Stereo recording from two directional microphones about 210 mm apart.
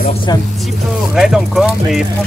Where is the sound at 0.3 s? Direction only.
20° left (ahead or behind).